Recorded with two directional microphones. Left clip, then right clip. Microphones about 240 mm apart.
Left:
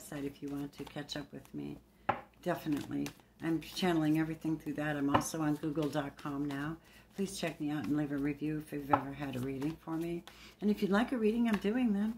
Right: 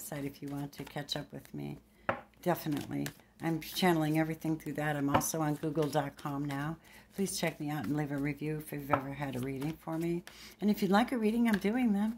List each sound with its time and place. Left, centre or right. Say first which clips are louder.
0.1 s speech: even; right